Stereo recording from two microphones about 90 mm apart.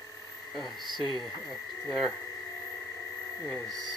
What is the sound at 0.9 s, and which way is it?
Speech, 55° left (ahead or behind).